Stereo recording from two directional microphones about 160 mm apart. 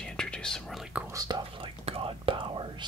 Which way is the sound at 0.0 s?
5° left (ahead or behind).